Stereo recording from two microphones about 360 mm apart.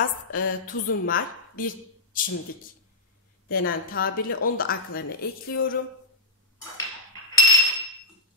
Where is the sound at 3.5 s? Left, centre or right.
Left.